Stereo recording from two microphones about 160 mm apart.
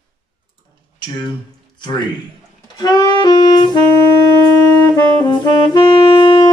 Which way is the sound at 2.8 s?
25° left (ahead or behind).